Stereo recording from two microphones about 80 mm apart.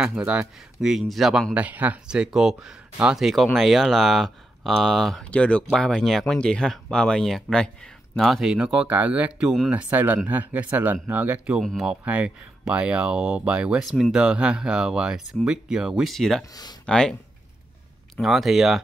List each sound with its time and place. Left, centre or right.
0.0 s speech: centre
1.5 s speech: centre
2.0 s speech: centre
5.2 s speech: centre
8.5 s speech: centre
18.1 s speech: centre